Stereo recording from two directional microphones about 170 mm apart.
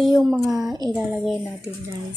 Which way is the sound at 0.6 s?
25° right (ahead or behind).